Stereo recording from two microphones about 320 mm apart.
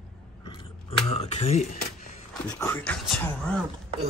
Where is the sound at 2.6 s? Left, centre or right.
Centre.